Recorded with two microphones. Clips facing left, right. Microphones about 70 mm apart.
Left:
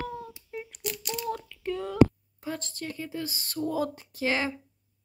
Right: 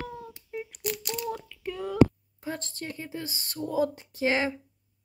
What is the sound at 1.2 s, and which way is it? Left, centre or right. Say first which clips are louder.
Child singing: left 1 dB; centre.